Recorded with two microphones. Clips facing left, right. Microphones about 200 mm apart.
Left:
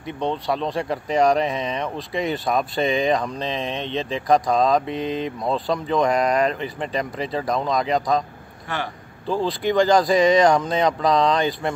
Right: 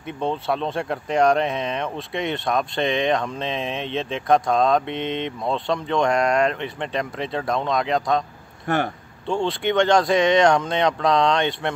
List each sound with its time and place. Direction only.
0.0 s speech: centre (ahead or behind)
8.6 s speech: 50° right (ahead or behind)
9.3 s speech: centre (ahead or behind)